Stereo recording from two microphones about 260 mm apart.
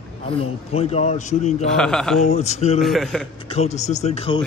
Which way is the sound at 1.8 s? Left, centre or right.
Centre.